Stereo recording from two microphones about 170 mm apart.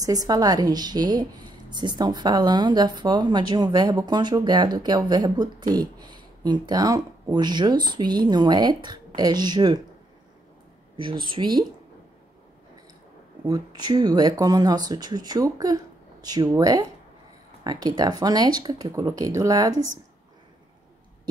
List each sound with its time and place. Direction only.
0.0 s a woman's voice: 20° right (ahead or behind)
11.0 s a woman's voice: 30° right (ahead or behind)
13.5 s a woman's voice: 25° right (ahead or behind)